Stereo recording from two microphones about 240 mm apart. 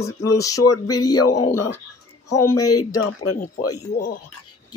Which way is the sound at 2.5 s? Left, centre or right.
Left.